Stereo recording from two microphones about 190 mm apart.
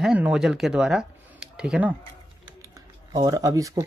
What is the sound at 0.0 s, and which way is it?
Speech, 5° right (ahead or behind).